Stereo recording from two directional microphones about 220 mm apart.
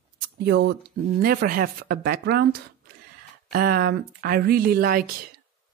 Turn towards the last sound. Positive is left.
turn(degrees=-40)  # may be behind; listen again after turning